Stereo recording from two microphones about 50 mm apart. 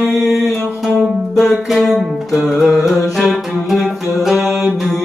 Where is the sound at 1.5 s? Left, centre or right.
Centre.